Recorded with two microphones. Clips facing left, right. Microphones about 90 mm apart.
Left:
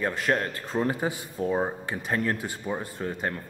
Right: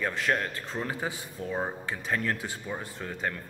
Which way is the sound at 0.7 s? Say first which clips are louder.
Left 9 dB; 25° left (ahead or behind).